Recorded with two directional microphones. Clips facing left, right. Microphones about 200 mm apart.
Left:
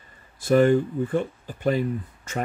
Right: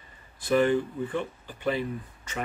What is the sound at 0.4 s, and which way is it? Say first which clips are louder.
Speech: left 5 dB; 45° left (ahead or behind).